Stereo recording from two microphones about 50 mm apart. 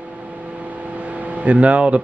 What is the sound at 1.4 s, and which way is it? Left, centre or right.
Speech, right.